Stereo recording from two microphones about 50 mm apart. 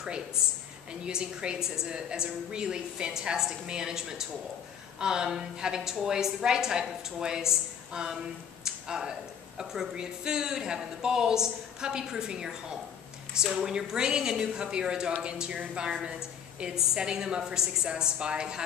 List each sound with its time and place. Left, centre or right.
1.0 s a woman's voice: centre
8.6 s a sound: centre
9.6 s a woman's voice: centre